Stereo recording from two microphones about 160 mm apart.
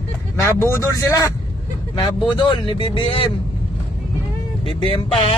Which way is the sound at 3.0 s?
35° left (ahead or behind).